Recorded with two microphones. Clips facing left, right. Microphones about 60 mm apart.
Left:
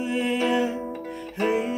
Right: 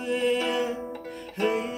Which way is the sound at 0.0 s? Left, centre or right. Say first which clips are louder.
Left 1 dB; centre.